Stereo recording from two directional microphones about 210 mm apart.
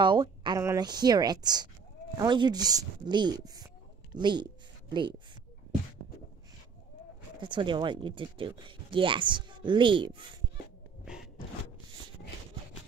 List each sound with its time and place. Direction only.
0.0 s speech: 20° right (ahead or behind)
7.3 s speech: 20° right (ahead or behind)